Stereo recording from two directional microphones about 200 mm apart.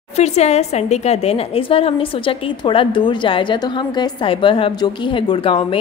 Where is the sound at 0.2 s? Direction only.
35° left (ahead or behind).